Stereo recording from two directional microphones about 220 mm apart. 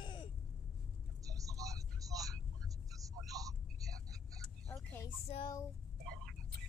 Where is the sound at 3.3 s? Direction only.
15° right (ahead or behind).